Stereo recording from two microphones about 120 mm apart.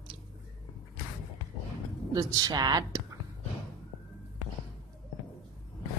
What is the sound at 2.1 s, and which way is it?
Speech, 30° right (ahead or behind).